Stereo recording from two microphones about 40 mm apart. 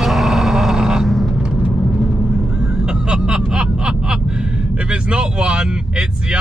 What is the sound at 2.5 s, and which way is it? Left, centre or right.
Vehicle, right.